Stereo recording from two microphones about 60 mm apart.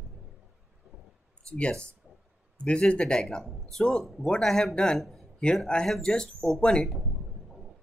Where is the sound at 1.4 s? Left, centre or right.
Centre.